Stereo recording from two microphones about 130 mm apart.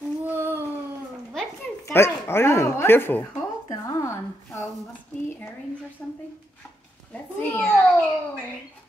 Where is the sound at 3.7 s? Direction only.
25° left (ahead or behind).